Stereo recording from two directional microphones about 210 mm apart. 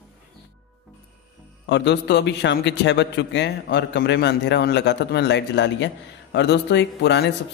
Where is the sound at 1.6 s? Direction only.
55° left (ahead or behind).